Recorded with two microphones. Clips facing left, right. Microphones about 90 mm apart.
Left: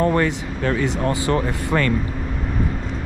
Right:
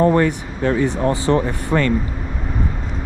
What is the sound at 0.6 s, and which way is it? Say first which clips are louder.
Speech: right 4 dB; 35° right (ahead or behind).